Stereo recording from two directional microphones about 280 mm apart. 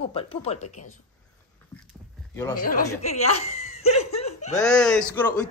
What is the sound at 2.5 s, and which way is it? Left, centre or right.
Speech, left.